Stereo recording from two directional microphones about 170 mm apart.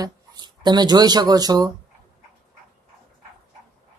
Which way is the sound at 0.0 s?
25° right (ahead or behind).